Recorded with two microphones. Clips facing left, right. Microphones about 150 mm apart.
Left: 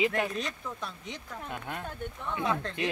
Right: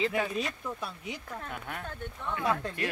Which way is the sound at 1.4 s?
15° left (ahead or behind).